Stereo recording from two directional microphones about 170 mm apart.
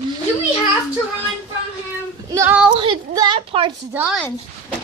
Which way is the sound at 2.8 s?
30° right (ahead or behind).